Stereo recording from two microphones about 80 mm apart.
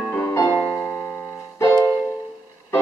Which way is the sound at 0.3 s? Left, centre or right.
Left.